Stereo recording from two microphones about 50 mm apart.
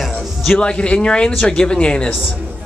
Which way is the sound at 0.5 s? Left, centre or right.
Centre.